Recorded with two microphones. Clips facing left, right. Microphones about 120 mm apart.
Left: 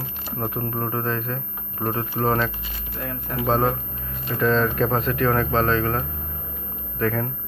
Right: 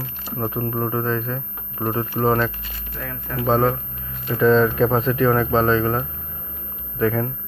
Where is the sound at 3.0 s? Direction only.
20° left (ahead or behind).